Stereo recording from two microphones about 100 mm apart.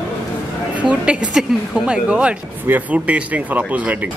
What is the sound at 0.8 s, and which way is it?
Speech, 10° right (ahead or behind).